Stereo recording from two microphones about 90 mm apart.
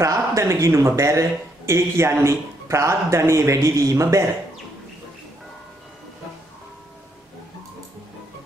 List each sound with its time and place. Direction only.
0.0 s speech: 35° right (ahead or behind)